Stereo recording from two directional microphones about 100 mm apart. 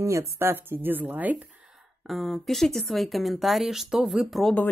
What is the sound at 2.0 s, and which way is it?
Speech, centre (ahead or behind).